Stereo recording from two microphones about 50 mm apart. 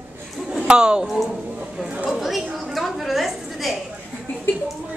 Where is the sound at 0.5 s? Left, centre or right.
Centre.